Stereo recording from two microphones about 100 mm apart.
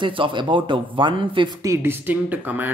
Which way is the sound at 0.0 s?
55° right (ahead or behind).